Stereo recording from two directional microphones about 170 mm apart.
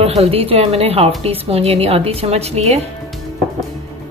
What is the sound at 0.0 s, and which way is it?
A woman's voice, 35° right (ahead or behind).